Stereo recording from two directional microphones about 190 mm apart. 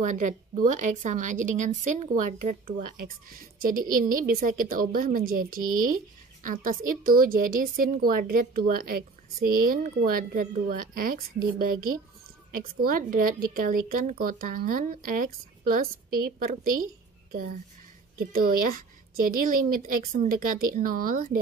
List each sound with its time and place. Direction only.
0.0 s a woman's voice: 40° right (ahead or behind)
18.2 s a woman's voice: 50° right (ahead or behind)